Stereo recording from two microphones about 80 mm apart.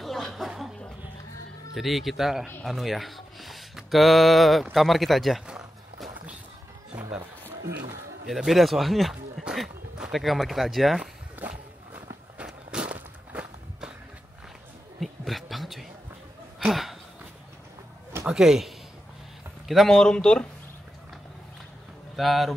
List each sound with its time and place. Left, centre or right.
0.0 s a sound: centre
1.7 s speech: centre
5.5 s music: centre
7.0 s music: right
8.3 s speech: centre
9.4 s a sound: centre
10.1 s speech: centre
11.3 s walk: right
15.0 s a sound: centre
18.2 s speech: centre
19.7 s speech: centre
22.1 s speech: centre